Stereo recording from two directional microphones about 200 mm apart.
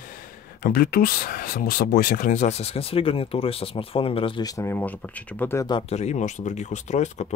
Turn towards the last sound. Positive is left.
turn(degrees=35)  # may be behind; listen again after turning